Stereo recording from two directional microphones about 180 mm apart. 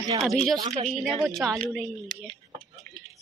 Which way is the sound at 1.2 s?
Centre (ahead or behind).